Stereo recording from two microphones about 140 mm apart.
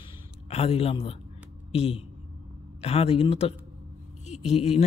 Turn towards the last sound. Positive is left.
turn(degrees=50)  # may be behind; listen again after turning